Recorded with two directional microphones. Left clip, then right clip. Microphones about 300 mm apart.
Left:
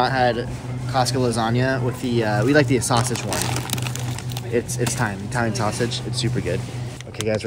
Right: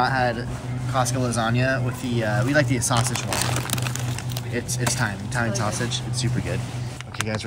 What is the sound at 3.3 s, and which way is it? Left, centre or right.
Speech, centre.